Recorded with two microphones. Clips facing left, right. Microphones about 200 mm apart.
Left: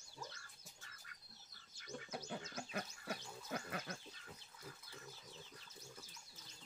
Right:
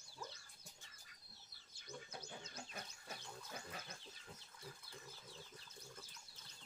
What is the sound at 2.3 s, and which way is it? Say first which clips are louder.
Pig: left 7 dB; 65° left (ahead or behind).